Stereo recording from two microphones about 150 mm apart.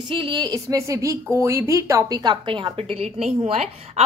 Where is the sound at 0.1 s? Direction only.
30° right (ahead or behind).